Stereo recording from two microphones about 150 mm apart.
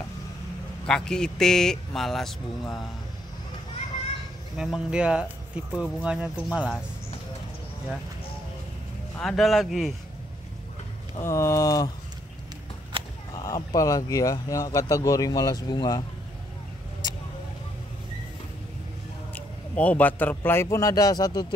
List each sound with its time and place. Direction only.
0.8 s speech: 5° left (ahead or behind)
4.6 s speech: 5° right (ahead or behind)
5.7 s speech: 5° left (ahead or behind)
6.0 s speech: 5° right (ahead or behind)
9.2 s speech: centre (ahead or behind)
11.1 s speech: 20° left (ahead or behind)
13.3 s a sound: 25° left (ahead or behind)
13.6 s speech: 25° left (ahead or behind)
19.3 s a man's voice: 10° left (ahead or behind)
20.6 s speech: 25° left (ahead or behind)